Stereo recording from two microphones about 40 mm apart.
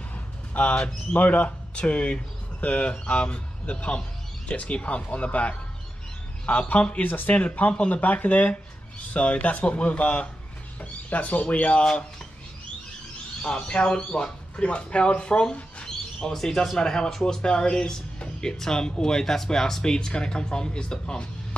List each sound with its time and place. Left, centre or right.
0.1 s a sound: left
1.1 s speech: left
6.7 s speech: left
7.1 s speech: left
7.3 s speech: left
13.4 s speech: left
15.8 s bird: left
16.3 s speech: centre
18.2 s music: left
18.6 s speech: centre